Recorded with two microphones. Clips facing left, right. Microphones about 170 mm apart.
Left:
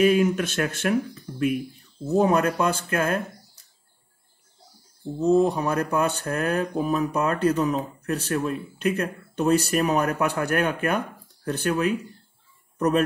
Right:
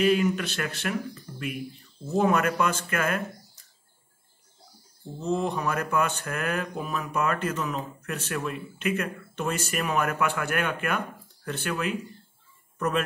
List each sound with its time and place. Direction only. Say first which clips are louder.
0.0 s speech: left 4 dB; 50° left (ahead or behind)
2.1 s speech: left 3 dB; 35° left (ahead or behind)
5.2 s speech: left 7 dB; 35° left (ahead or behind)